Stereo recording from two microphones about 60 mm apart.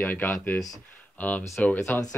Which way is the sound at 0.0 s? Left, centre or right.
Left.